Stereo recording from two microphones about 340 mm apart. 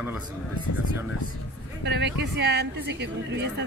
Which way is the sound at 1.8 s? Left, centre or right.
Right.